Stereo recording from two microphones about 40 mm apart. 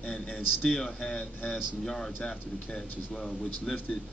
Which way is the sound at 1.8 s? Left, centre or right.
Centre.